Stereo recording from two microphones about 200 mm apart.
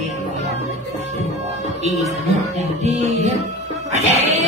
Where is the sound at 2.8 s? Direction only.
35° right (ahead or behind).